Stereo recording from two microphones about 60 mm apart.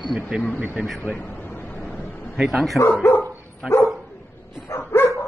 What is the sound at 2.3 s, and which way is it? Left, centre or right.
Speech, centre.